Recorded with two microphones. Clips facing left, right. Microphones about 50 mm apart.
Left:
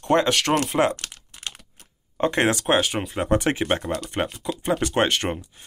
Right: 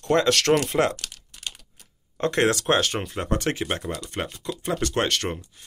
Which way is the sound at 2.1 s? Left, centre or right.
Centre.